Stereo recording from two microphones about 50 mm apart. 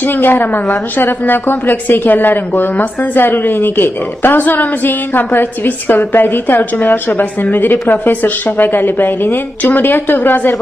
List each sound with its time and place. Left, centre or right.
0.0 s a woman's voice: left